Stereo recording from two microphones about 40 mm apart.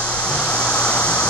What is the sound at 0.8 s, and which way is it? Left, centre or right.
Vehicle, left.